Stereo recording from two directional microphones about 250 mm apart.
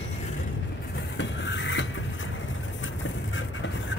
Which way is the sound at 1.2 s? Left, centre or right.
Left.